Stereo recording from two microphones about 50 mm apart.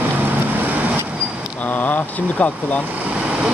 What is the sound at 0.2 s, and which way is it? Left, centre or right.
Vehicle, right.